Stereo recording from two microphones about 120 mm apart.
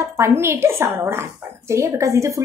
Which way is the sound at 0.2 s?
20° right (ahead or behind).